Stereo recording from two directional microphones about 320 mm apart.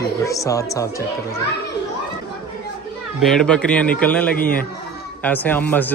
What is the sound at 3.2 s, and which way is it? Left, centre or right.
Speech, centre.